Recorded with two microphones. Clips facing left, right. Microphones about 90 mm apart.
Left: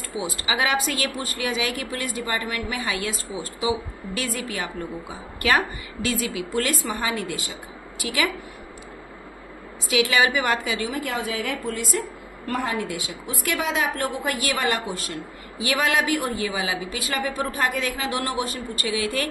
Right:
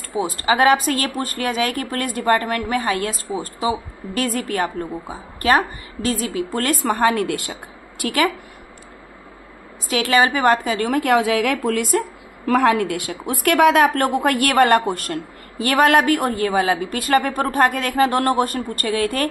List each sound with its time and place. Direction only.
0.1 s speech: 45° right (ahead or behind)
8.0 s speech: 50° right (ahead or behind)
10.1 s a woman's voice: 45° right (ahead or behind); by 12.1 s 60° right (ahead or behind)
12.5 s a woman's voice: 80° right; by 19.2 s 50° right (ahead or behind)